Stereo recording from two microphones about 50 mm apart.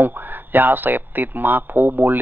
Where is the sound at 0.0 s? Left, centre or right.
Right.